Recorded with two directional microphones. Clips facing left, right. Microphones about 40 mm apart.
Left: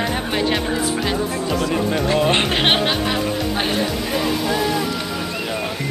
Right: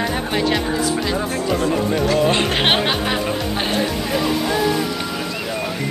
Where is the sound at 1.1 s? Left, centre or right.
Right.